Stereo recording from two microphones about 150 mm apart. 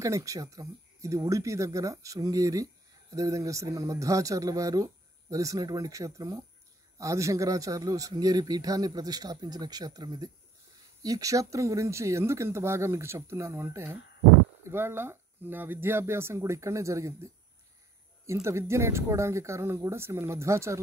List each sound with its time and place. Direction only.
0.0 s speech: 20° right (ahead or behind)